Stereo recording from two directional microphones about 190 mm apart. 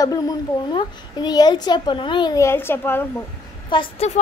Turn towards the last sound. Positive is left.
turn(degrees=25)  # may be behind; listen again after turning